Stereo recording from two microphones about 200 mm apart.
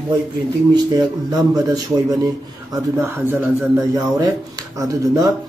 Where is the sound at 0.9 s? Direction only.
20° right (ahead or behind).